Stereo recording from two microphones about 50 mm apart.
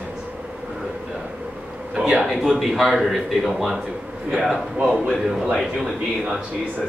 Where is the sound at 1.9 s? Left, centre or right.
Centre.